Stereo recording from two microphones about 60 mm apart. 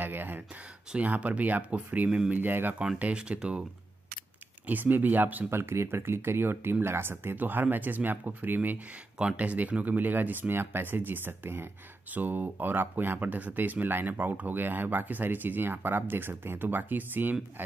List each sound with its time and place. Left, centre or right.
0.0 s a sound: right
0.9 s speech: right
2.3 s speech: right
3.0 s speech: centre
4.6 s speech: right
5.5 s speech: right